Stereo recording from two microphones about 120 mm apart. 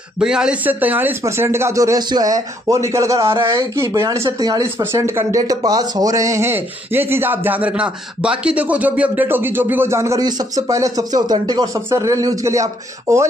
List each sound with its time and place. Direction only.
0.2 s speech: 5° right (ahead or behind); by 13.2 s 25° right (ahead or behind)